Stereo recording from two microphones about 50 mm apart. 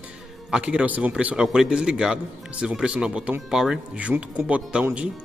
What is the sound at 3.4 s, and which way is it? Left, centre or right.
Speech, centre.